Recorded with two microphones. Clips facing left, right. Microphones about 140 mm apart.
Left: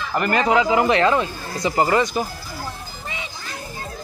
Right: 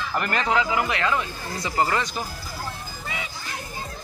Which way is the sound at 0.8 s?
30° left (ahead or behind).